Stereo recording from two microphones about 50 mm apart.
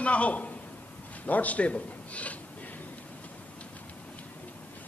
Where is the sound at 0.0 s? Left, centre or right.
Left.